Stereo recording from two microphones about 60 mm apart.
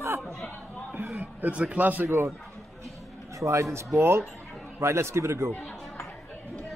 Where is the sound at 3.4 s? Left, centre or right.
Right.